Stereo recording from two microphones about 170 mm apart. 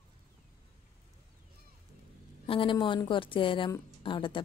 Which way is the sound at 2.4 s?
30° left (ahead or behind).